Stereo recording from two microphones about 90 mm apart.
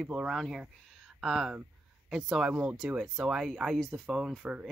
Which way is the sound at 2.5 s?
20° right (ahead or behind).